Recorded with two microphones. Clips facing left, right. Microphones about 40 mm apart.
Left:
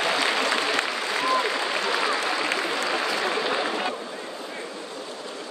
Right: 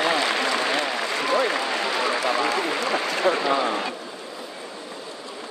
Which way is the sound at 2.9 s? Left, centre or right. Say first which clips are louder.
Right 3 dB; right.